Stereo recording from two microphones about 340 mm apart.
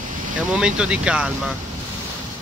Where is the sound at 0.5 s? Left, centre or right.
Centre.